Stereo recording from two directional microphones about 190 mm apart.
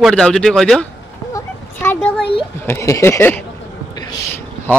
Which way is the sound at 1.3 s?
15° left (ahead or behind).